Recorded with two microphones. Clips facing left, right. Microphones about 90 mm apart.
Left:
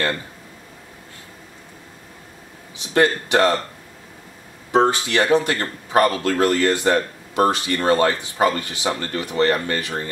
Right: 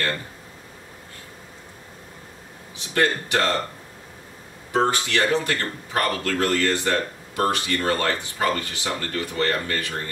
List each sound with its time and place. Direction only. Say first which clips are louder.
3.0 s speech: left 5 dB; 20° left (ahead or behind)
4.7 s speech: left 4 dB; 20° left (ahead or behind)